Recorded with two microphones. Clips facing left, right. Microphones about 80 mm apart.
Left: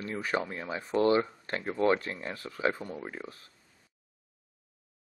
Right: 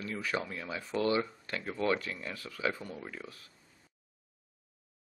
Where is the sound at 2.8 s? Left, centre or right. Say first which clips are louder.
Left 4 dB; centre.